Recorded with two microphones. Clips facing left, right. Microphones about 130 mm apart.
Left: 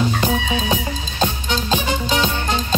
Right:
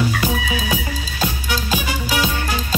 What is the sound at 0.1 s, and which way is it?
Music, 35° left (ahead or behind).